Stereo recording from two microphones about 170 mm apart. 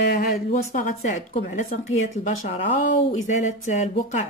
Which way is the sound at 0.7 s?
45° left (ahead or behind).